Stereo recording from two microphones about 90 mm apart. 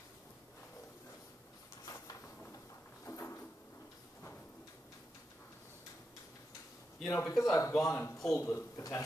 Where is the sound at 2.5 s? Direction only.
30° left (ahead or behind).